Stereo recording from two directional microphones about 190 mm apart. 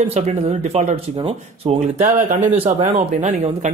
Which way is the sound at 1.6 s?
40° right (ahead or behind).